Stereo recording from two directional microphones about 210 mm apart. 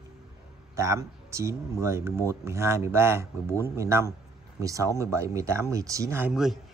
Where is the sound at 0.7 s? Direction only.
15° right (ahead or behind).